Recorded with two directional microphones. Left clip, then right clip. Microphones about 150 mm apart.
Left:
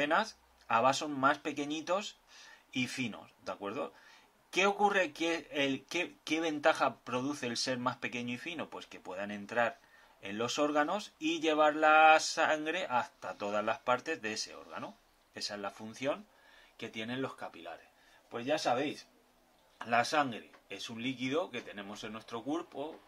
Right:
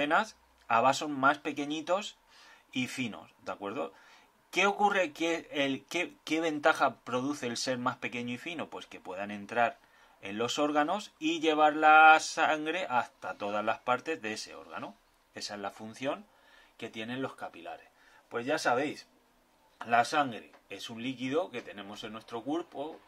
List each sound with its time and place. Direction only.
0.0 s a man's voice: 20° right (ahead or behind)
19.8 s a man's voice: 10° right (ahead or behind)